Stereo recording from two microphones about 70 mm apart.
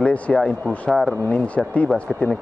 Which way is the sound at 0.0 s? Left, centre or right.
Centre.